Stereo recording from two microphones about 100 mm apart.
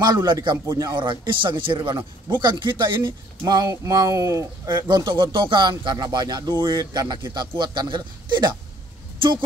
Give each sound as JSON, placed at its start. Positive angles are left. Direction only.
{"t": 0.0, "sound": "speech", "side_deg": -45}
{"t": 0.7, "sound": "speech", "side_deg": -40}
{"t": 0.9, "sound": "speech", "side_deg": -55}
{"t": 4.8, "sound": "speech", "side_deg": -50}